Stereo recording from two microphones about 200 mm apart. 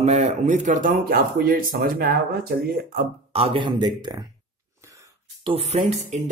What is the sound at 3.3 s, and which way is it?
Speech, 25° right (ahead or behind).